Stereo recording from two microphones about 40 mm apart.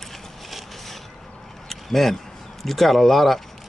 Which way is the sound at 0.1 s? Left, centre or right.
Centre.